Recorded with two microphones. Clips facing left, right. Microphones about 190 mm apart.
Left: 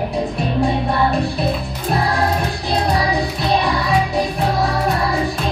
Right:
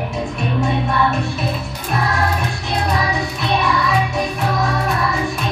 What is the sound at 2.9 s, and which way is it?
Music, 35° left (ahead or behind).